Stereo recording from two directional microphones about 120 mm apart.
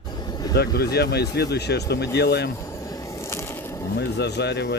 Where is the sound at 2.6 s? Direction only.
25° left (ahead or behind).